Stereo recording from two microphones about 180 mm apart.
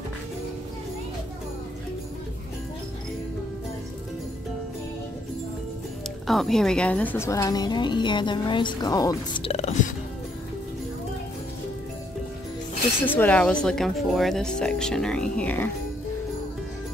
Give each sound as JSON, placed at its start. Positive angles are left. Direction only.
{"t": 6.2, "sound": "a woman's voice", "side_deg": 0}
{"t": 9.4, "sound": "music", "side_deg": 35}
{"t": 13.0, "sound": "speech", "side_deg": 10}